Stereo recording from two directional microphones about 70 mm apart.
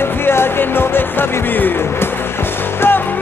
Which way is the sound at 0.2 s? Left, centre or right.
Left.